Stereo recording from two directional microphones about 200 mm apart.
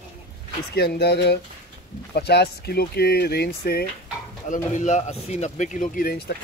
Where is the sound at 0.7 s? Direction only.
55° left (ahead or behind).